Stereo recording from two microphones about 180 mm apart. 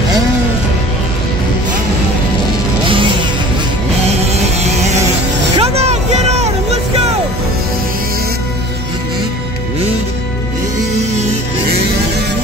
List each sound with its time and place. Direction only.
2.9 s music: 30° right (ahead or behind)